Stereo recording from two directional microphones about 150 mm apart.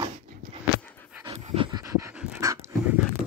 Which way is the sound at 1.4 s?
45° right (ahead or behind).